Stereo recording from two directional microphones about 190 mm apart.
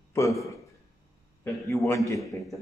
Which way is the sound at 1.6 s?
15° left (ahead or behind).